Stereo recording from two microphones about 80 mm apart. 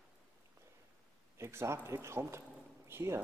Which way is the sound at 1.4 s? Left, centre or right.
Right.